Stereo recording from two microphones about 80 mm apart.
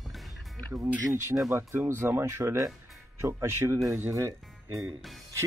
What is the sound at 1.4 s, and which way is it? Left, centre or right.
Speech, right.